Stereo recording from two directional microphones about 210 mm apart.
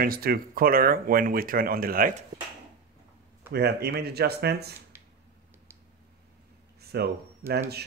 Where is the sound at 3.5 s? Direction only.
50° right (ahead or behind).